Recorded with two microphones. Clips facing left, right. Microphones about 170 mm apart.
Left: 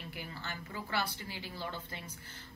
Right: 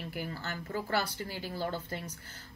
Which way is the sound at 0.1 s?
40° right (ahead or behind).